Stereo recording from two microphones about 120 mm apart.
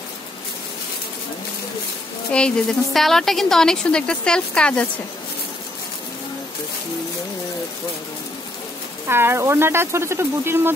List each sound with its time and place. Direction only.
2.3 s a woman's voice: 5° left (ahead or behind)
9.0 s speech: 20° right (ahead or behind)